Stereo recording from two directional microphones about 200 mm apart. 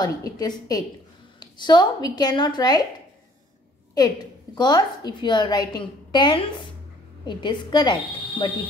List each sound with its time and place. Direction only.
0.0 s a woman's voice: 20° left (ahead or behind)
3.9 s a woman's voice: 20° left (ahead or behind)